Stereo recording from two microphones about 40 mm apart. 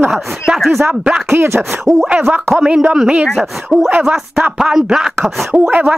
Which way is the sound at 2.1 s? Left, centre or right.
Right.